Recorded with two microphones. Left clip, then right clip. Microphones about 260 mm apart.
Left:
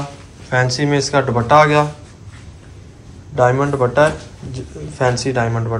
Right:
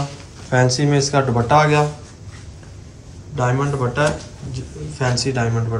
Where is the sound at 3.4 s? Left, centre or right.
Centre.